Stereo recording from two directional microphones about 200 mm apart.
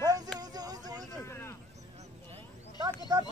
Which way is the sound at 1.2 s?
15° left (ahead or behind).